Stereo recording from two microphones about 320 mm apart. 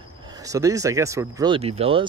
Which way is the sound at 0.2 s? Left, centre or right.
Centre.